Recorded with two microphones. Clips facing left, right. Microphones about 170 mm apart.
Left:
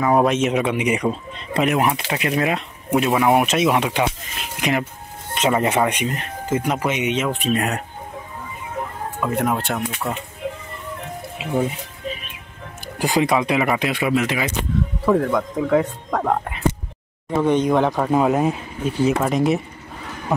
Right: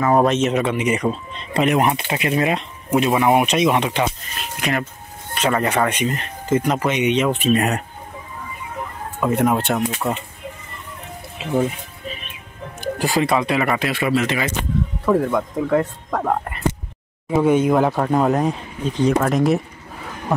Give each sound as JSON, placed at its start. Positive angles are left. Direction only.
{"t": 0.0, "sound": "speech", "side_deg": 5}
{"t": 5.8, "sound": "speech", "side_deg": 10}
{"t": 9.2, "sound": "speech", "side_deg": 0}
{"t": 9.8, "sound": "speech", "side_deg": -20}
{"t": 10.4, "sound": "vehicle", "side_deg": 90}
{"t": 13.0, "sound": "speech", "side_deg": 15}
{"t": 15.0, "sound": "speech", "side_deg": -5}